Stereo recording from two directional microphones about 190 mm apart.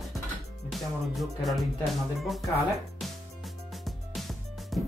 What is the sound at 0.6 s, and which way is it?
Speech, centre (ahead or behind).